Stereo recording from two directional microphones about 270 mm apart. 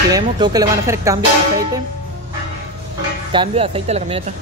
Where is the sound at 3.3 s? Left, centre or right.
Centre.